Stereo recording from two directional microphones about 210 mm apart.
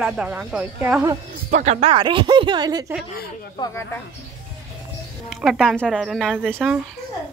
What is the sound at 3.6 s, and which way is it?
Speech, 20° left (ahead or behind).